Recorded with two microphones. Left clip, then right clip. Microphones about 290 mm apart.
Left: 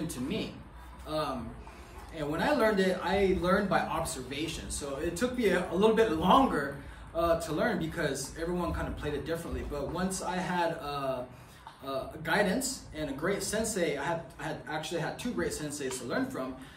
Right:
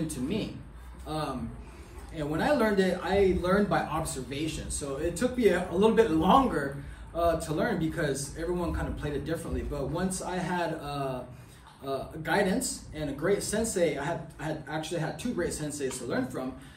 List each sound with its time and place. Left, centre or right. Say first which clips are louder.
1.0 s a man's voice: left 1 dB; centre